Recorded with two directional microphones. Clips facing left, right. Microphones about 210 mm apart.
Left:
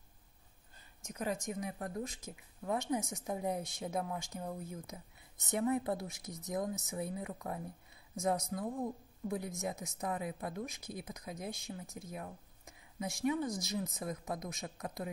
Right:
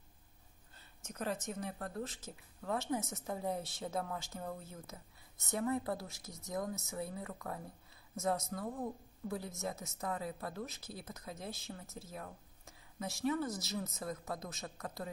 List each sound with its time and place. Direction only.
1.0 s a woman's voice: 10° left (ahead or behind)